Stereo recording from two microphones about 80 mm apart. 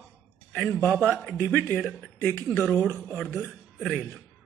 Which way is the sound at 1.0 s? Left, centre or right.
Centre.